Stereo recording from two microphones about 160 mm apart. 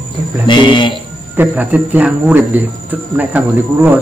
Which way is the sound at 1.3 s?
10° right (ahead or behind).